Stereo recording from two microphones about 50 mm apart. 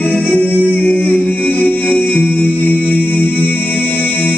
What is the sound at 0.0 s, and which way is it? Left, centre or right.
Music, left.